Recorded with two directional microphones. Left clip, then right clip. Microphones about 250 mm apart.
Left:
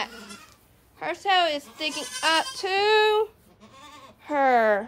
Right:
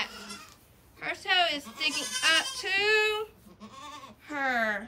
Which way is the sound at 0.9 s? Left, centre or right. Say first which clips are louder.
Left 4 dB; centre.